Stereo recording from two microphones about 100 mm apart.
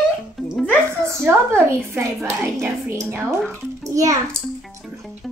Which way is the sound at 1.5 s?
20° right (ahead or behind).